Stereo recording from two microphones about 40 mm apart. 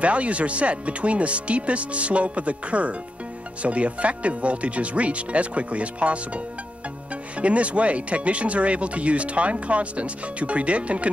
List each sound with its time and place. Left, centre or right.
0.0 s speech: right